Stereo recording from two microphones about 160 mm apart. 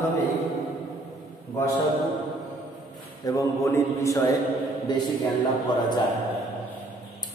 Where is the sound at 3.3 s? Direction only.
20° left (ahead or behind).